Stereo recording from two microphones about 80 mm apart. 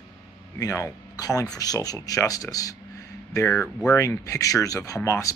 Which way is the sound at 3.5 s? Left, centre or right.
Centre.